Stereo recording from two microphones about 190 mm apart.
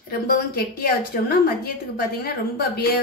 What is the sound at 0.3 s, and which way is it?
Speech, 50° left (ahead or behind).